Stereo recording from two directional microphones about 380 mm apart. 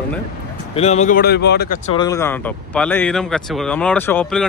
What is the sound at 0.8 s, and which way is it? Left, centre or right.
Speech, centre.